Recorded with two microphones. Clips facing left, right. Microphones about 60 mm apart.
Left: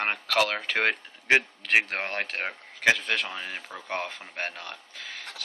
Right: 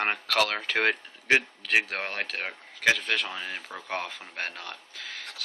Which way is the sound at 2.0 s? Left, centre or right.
Centre.